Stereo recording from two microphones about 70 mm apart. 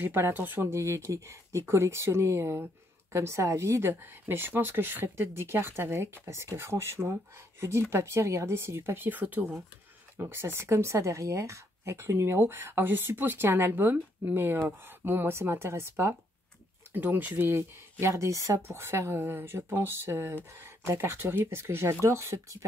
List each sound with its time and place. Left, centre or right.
0.0 s speech: right
10.1 s speech: right
16.9 s speech: right